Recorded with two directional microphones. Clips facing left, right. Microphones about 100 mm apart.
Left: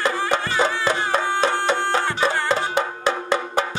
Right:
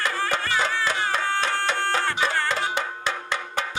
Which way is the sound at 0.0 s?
20° left (ahead or behind).